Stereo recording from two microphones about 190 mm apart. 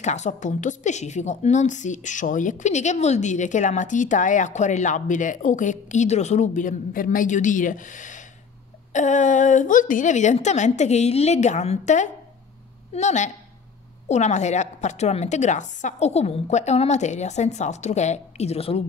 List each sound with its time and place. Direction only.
0.0 s a woman's voice: 35° left (ahead or behind)